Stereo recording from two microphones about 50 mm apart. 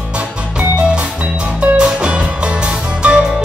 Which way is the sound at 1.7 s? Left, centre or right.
Centre.